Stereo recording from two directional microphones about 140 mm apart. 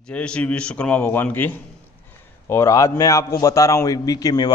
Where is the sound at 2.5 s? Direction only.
20° left (ahead or behind).